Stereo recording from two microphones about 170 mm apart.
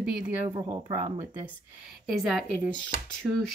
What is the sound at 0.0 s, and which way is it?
Speech, 5° right (ahead or behind).